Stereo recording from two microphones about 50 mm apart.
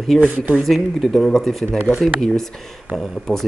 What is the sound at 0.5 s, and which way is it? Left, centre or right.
Speech, centre.